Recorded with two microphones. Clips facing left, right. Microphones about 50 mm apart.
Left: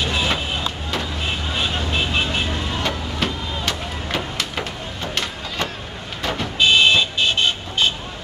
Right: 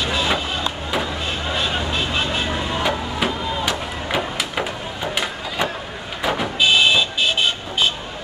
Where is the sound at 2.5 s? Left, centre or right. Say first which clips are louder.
Right 3 dB; centre.